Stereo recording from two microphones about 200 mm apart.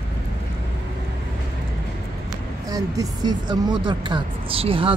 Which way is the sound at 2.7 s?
20° right (ahead or behind).